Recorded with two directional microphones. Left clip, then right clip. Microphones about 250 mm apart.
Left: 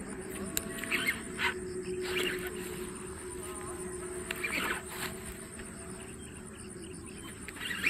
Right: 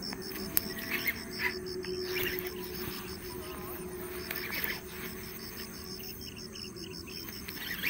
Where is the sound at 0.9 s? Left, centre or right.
Left.